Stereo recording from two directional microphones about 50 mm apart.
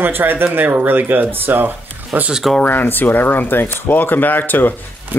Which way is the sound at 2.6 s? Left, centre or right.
Left.